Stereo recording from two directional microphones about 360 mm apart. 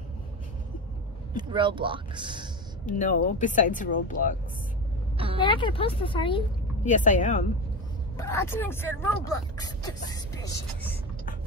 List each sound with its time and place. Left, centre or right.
1.3 s speech: centre
2.9 s speech: left
5.1 s a sound: centre
5.4 s speech: centre
8.2 s speech: centre